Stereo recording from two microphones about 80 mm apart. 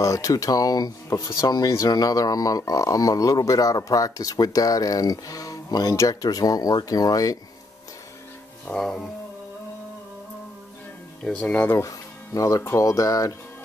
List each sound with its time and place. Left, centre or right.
0.0 s speech: left
8.6 s speech: centre
11.2 s speech: centre
11.7 s speech: left